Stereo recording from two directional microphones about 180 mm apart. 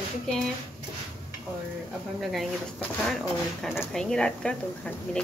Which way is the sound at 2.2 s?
Centre (ahead or behind).